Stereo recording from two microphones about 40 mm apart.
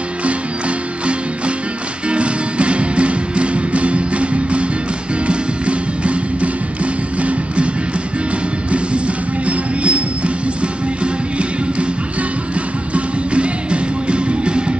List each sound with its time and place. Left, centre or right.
2.0 s music: right
8.7 s music: right